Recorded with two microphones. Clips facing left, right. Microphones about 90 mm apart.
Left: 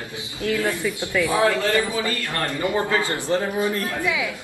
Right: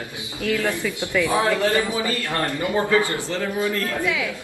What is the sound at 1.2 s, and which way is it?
Speech, 20° right (ahead or behind).